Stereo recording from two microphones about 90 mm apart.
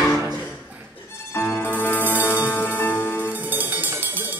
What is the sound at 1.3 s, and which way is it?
Music, 20° left (ahead or behind).